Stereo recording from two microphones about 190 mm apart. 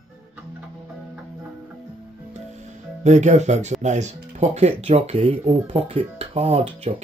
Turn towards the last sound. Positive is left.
turn(degrees=-35)  # may be behind; listen again after turning